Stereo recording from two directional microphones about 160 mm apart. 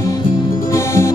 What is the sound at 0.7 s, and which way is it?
Music, 15° left (ahead or behind).